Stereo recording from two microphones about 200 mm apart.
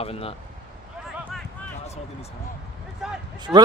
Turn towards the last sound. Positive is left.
turn(degrees=-5)  # may be behind; listen again after turning